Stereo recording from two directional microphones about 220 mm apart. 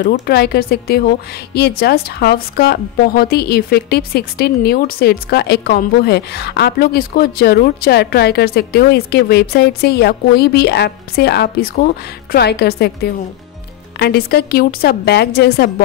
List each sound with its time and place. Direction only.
0.0 s a woman's voice: 45° left (ahead or behind)